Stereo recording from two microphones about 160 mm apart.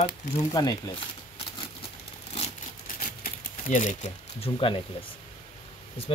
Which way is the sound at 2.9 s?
60° left (ahead or behind).